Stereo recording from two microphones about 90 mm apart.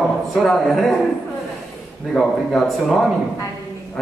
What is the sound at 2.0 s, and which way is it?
A man's voice, 5° left (ahead or behind).